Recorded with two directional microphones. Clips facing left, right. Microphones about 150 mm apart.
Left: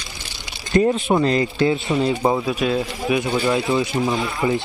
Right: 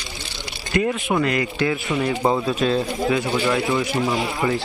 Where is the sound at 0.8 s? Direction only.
25° left (ahead or behind).